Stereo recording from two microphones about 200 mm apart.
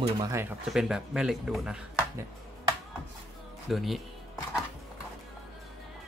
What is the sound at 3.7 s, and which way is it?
Speech, centre (ahead or behind).